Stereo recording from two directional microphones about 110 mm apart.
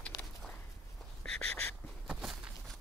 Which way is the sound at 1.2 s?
10° left (ahead or behind).